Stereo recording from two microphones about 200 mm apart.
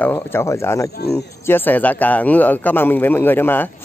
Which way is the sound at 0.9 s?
55° left (ahead or behind).